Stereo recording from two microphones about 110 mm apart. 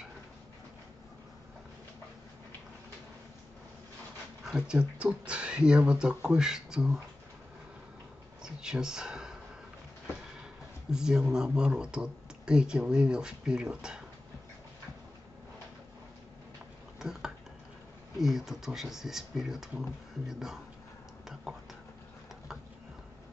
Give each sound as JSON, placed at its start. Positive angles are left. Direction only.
{"t": 4.5, "sound": "speech", "side_deg": -10}
{"t": 8.4, "sound": "a sound", "side_deg": -5}
{"t": 10.9, "sound": "speech", "side_deg": -5}
{"t": 17.0, "sound": "a sound", "side_deg": -5}
{"t": 18.1, "sound": "speech", "side_deg": -5}
{"t": 21.5, "sound": "whispering", "side_deg": -5}